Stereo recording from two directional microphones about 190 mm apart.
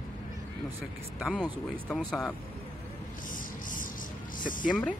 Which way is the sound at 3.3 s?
45° left (ahead or behind).